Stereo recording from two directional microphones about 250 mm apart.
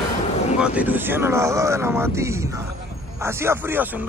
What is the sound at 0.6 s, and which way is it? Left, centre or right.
Speech, centre.